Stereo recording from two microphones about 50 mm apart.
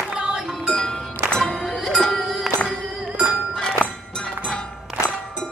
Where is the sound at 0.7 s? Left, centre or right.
Centre.